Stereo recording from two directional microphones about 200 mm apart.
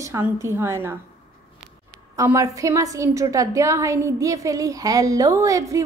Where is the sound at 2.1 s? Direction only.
15° right (ahead or behind).